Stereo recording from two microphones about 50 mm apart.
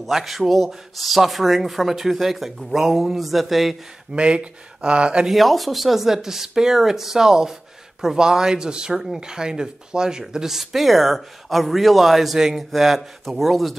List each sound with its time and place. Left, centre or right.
0.0 s speech: centre
4.1 s speech: right
5.3 s speech: centre